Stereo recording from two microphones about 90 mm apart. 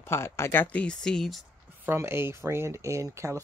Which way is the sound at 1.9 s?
25° right (ahead or behind).